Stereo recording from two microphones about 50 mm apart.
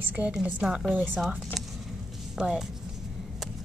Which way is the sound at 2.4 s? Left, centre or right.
Centre.